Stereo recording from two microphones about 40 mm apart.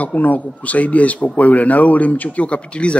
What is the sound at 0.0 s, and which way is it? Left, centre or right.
Speech, left.